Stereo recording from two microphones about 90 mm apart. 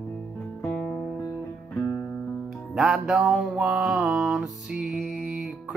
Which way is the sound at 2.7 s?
5° right (ahead or behind).